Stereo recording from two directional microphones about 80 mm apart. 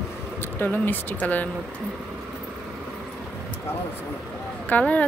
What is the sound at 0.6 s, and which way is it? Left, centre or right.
Speech, left.